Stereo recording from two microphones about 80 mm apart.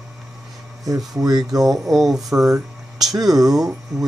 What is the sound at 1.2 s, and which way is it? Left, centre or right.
Speech, right.